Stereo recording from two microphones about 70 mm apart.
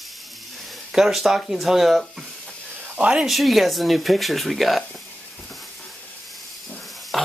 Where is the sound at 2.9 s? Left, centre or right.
Centre.